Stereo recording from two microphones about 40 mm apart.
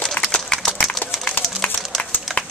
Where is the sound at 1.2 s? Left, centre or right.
Left.